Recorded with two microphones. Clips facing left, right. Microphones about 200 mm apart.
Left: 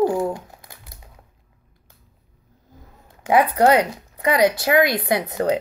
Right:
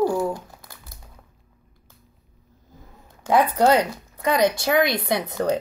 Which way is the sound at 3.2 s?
10° left (ahead or behind).